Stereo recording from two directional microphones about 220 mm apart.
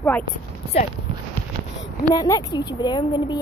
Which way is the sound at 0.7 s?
30° left (ahead or behind).